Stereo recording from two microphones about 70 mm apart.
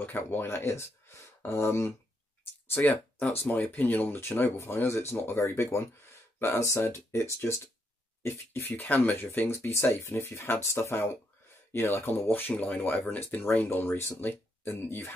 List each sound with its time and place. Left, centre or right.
0.0 s speech: left
5.1 s speech: left